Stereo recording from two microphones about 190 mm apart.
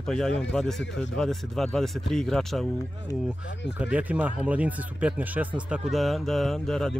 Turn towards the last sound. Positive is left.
turn(degrees=5)  # may be behind; listen again after turning